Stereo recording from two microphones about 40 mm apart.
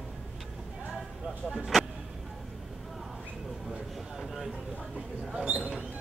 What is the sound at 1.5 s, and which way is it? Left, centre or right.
Vehicle, centre.